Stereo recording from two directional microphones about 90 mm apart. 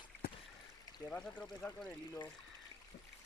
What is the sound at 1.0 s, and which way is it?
Speech, 15° left (ahead or behind).